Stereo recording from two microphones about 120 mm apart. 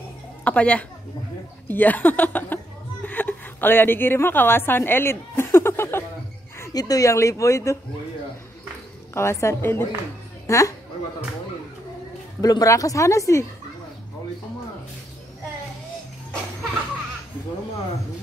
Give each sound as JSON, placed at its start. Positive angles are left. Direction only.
{"t": 0.4, "sound": "a woman's voice", "side_deg": 10}
{"t": 6.6, "sound": "speech", "side_deg": 30}
{"t": 9.1, "sound": "a woman's voice", "side_deg": 20}
{"t": 12.4, "sound": "speech", "side_deg": 30}